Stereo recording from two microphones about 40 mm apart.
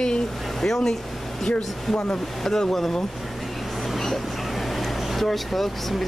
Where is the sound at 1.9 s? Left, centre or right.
Centre.